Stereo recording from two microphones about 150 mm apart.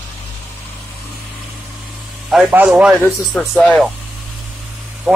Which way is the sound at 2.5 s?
10° right (ahead or behind).